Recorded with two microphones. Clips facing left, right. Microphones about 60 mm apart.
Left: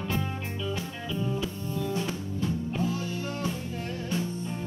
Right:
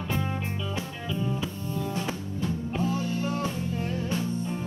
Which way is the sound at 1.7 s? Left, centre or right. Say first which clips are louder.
Left 1 dB; right.